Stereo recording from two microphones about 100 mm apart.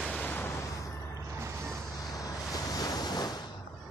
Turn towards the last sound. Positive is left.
turn(degrees=40)  # may be behind; listen again after turning